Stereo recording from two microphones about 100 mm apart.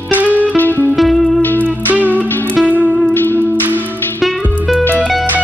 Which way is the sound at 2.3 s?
20° left (ahead or behind).